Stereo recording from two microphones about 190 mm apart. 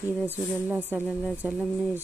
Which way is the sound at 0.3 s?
10° right (ahead or behind).